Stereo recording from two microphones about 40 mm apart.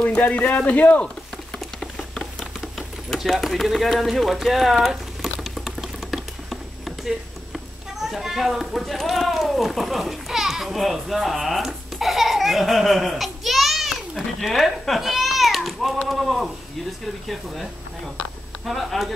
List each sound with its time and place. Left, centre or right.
0.0 s speech: left
1.8 s patter: centre
3.3 s a sound: centre
7.1 s speech: centre
14.5 s cat: centre
16.1 s speech: centre
18.7 s speech: centre